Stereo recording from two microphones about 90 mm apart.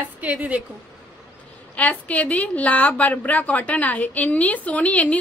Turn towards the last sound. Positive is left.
turn(degrees=15)  # may be behind; listen again after turning